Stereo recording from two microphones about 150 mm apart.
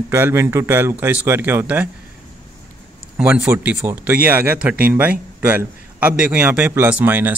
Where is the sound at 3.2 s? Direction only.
10° right (ahead or behind).